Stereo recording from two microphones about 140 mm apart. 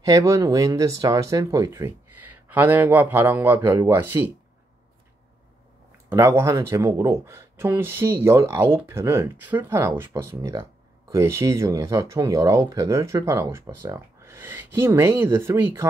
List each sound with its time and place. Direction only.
0.0 s speech: 20° right (ahead or behind)
6.0 s speech: 20° right (ahead or behind)